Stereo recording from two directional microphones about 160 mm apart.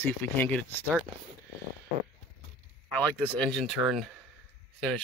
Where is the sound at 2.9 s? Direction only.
10° left (ahead or behind).